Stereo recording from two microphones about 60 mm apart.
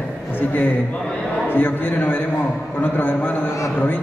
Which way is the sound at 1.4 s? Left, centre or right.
Left.